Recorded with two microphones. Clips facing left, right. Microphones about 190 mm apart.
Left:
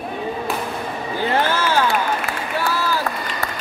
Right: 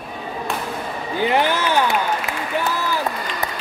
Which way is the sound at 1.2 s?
15° right (ahead or behind).